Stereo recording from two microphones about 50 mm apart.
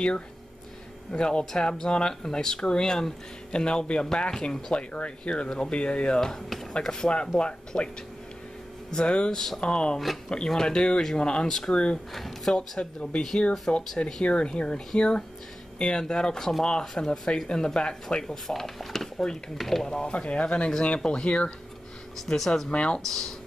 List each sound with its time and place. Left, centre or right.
1.1 s speech: centre
6.2 s speech: centre
8.9 s speech: left
12.1 s speech: centre
12.5 s speech: centre
13.4 s speech: centre
18.2 s speech: centre
19.9 s speech: centre
22.1 s speech: centre
22.7 s speech: left
23.0 s speech: centre